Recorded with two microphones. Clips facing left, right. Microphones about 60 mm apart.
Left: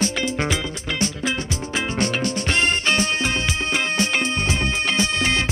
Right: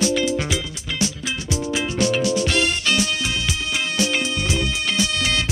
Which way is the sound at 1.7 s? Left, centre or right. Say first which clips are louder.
Right 1 dB; left.